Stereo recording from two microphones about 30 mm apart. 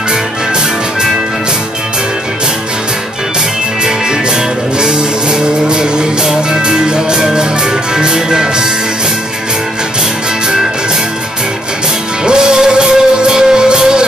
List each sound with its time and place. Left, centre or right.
3.8 s music: right
12.3 s music: right